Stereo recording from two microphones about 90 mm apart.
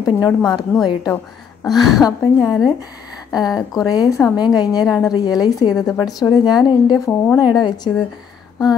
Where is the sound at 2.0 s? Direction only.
45° left (ahead or behind).